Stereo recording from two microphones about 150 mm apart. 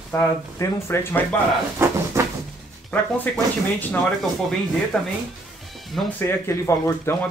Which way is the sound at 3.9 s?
5° left (ahead or behind).